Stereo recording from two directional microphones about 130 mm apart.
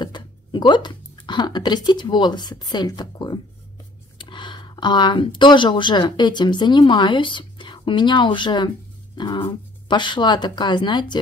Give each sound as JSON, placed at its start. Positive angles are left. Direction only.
{"t": 0.0, "sound": "speech", "side_deg": 35}